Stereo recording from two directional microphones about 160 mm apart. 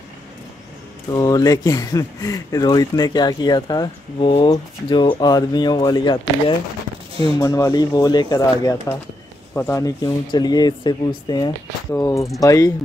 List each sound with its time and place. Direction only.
1.1 s speech: 25° left (ahead or behind)
7.2 s speech: 25° left (ahead or behind)